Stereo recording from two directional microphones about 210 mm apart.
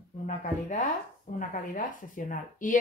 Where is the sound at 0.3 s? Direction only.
35° left (ahead or behind).